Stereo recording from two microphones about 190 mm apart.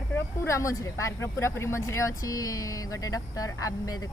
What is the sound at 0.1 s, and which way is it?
Speech, 15° left (ahead or behind).